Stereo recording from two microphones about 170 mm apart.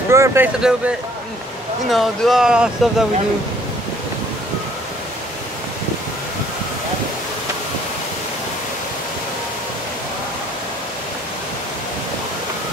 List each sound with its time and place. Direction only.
0.1 s speech: 15° right (ahead or behind)
0.6 s speech: 5° right (ahead or behind)